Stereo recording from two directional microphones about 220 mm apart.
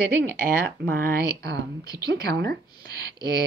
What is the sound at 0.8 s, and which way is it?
Speech, 40° right (ahead or behind).